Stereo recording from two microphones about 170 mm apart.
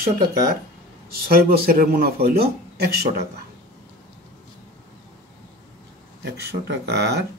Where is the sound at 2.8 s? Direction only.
70° right (ahead or behind).